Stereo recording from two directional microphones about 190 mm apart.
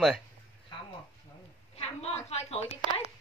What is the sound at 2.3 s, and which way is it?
Speech, 35° left (ahead or behind).